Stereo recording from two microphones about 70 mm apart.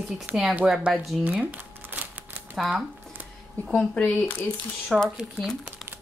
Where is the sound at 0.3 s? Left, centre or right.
Right.